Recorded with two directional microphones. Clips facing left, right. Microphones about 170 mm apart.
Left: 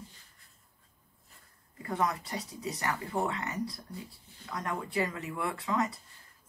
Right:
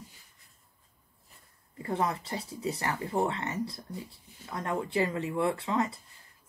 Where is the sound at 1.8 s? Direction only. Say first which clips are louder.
Right 1 dB; 30° right (ahead or behind).